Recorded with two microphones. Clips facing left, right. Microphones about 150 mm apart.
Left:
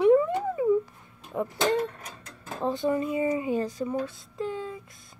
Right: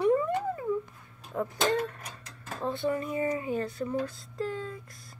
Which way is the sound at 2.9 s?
20° left (ahead or behind).